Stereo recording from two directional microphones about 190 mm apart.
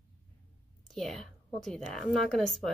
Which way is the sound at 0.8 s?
Centre (ahead or behind).